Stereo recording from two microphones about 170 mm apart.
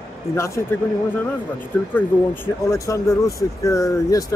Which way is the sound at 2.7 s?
20° left (ahead or behind).